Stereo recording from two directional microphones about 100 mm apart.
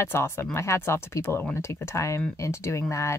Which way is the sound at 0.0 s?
25° left (ahead or behind).